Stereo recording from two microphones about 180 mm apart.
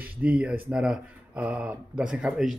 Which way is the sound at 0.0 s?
5° right (ahead or behind).